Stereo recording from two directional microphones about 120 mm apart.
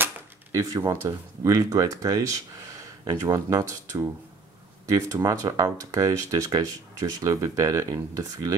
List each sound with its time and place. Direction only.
0.0 s speech: 25° right (ahead or behind)